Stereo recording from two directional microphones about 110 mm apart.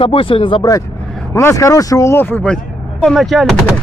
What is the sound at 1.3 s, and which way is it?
Speech, 25° left (ahead or behind).